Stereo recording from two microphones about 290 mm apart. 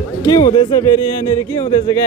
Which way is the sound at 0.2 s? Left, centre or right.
Centre.